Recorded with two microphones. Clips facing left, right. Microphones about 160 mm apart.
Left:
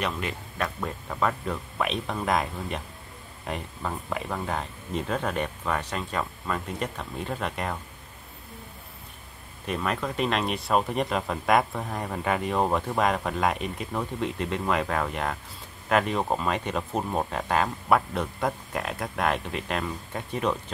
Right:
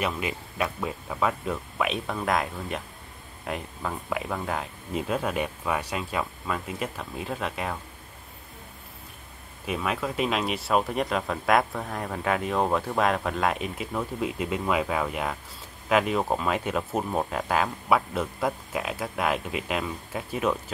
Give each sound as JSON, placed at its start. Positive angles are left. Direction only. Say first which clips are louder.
{"t": 0.0, "sound": "speech", "louder": "right 1 dB", "side_deg": -5}
{"t": 9.7, "sound": "speech", "louder": "even", "side_deg": -5}